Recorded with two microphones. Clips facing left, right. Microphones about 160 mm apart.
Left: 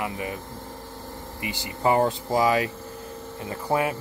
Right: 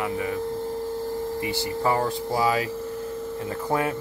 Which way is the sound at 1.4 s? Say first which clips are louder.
Left 3 dB; 20° left (ahead or behind).